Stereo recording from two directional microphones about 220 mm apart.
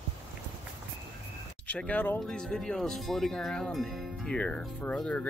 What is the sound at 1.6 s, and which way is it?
Speech, 5° left (ahead or behind).